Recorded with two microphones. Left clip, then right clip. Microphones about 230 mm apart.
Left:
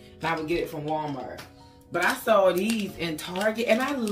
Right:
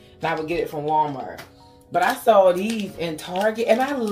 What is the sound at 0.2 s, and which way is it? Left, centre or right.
Speech, centre.